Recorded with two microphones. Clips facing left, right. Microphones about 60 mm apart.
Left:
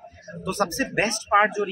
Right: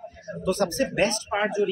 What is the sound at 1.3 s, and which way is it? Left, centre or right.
Speech, left.